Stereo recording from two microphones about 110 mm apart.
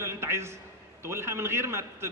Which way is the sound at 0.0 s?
25° right (ahead or behind).